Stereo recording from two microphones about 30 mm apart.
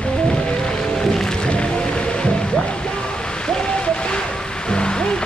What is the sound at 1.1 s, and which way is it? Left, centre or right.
Music, centre.